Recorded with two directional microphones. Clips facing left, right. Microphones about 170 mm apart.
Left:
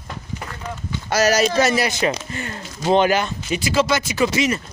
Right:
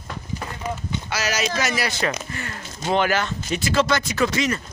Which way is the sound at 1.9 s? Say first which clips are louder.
Left 4 dB; 20° left (ahead or behind).